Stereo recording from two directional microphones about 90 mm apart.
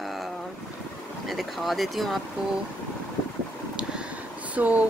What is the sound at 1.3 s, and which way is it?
Speech, centre (ahead or behind).